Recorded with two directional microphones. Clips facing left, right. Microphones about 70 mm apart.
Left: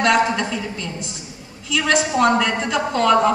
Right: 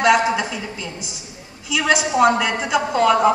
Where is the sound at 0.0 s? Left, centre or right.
Centre.